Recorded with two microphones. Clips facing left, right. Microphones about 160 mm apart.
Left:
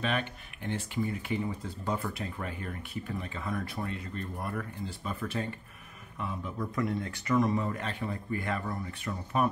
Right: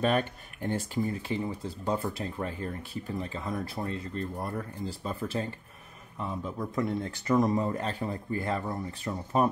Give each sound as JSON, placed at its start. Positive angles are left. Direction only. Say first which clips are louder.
{"t": 0.0, "sound": "speech", "louder": "right 5 dB", "side_deg": -45}
{"t": 7.3, "sound": "speech", "louder": "right 2 dB", "side_deg": -40}